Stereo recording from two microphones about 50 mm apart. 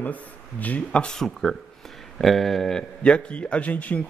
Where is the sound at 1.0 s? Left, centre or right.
Centre.